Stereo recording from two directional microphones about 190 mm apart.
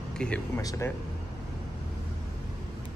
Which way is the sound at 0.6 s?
15° left (ahead or behind).